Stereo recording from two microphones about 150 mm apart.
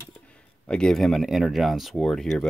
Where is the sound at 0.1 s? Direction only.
5° left (ahead or behind).